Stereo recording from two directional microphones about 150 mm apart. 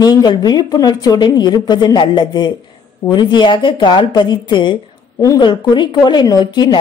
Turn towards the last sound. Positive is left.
turn(degrees=30)  # may be behind; listen again after turning